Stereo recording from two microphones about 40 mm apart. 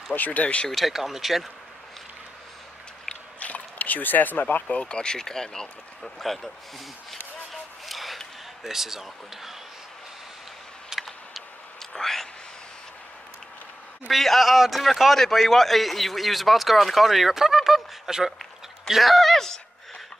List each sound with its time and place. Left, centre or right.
0.1 s speech: left
0.7 s a man's voice: centre
0.9 s a man's voice: centre
3.3 s squish: left
4.6 s speech: left
4.9 s speech: centre
7.8 s a sound: centre
8.6 s speech: centre
11.0 s vehicle: centre
11.9 s a sound: centre
14.1 s a man's voice: centre
18.9 s a sound: centre